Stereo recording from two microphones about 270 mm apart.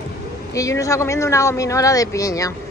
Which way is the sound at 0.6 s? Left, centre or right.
Centre.